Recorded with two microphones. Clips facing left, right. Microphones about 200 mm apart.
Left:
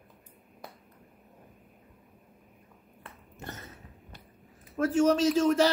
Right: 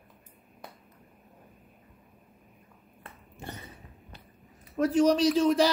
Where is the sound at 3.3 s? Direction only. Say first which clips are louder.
Right 1 dB; 15° right (ahead or behind).